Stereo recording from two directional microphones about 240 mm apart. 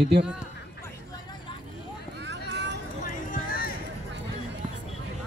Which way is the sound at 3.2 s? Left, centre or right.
Left.